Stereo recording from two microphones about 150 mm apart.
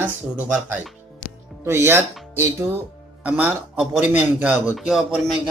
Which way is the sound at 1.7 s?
15° right (ahead or behind).